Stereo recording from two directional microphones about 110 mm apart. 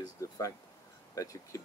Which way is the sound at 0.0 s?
30° left (ahead or behind).